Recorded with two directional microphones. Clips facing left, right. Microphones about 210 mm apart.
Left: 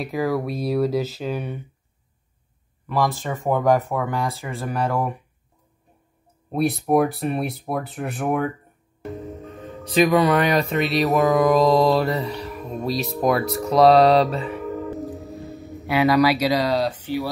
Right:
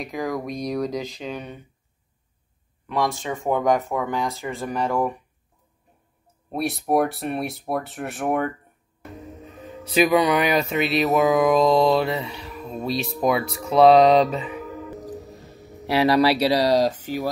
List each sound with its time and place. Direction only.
0.0 s speech: 5° left (ahead or behind)
2.9 s speech: 5° left (ahead or behind)
6.5 s speech: centre (ahead or behind)
9.9 s speech: centre (ahead or behind)
16.0 s speech: 30° right (ahead or behind)